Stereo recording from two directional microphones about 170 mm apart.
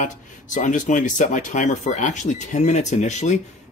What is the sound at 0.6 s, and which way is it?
Speech, 45° left (ahead or behind).